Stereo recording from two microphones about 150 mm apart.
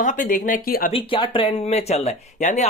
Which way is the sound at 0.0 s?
60° left (ahead or behind).